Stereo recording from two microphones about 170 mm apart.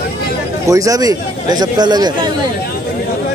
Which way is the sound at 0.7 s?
20° right (ahead or behind).